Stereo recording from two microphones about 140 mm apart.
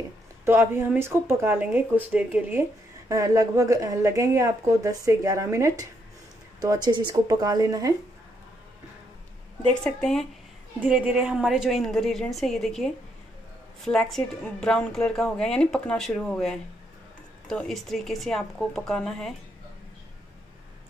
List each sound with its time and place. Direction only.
0.5 s speech: 15° right (ahead or behind)
3.1 s a woman's voice: 25° right (ahead or behind)
9.8 s a woman's voice: 5° left (ahead or behind)
10.8 s a woman's voice: 10° right (ahead or behind)